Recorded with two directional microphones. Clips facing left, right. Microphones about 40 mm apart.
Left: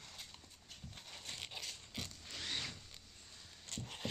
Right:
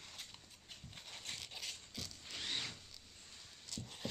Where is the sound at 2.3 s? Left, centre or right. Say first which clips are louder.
Even; centre.